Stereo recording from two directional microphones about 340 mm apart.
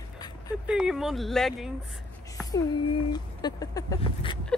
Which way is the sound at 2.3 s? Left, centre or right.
Centre.